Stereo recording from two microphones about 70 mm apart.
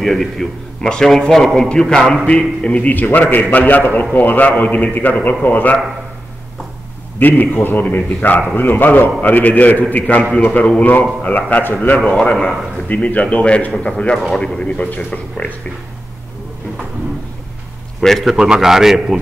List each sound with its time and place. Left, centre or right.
0.0 s a man's voice: centre; by 5.8 s left
7.2 s a man's voice: left
12.2 s a man's voice: centre
12.8 s a man's voice: left
18.0 s a man's voice: centre